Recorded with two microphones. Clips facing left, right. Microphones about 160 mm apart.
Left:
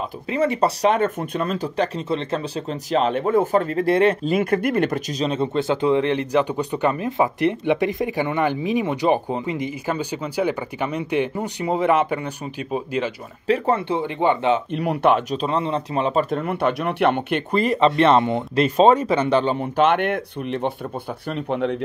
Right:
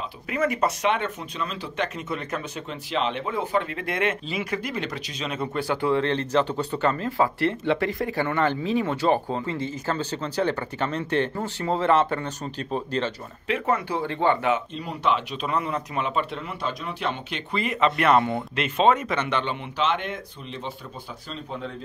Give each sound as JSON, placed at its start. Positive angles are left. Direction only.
{"t": 0.3, "sound": "speech", "side_deg": 30}
{"t": 2.0, "sound": "speech", "side_deg": 30}
{"t": 5.2, "sound": "speech", "side_deg": 30}
{"t": 13.5, "sound": "speech", "side_deg": 30}
{"t": 14.7, "sound": "speech", "side_deg": 65}
{"t": 15.3, "sound": "speech", "side_deg": 30}
{"t": 17.6, "sound": "speech", "side_deg": 35}
{"t": 19.8, "sound": "speech", "side_deg": 60}